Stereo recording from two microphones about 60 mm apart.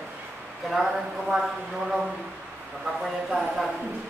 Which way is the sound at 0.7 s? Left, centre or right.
Centre.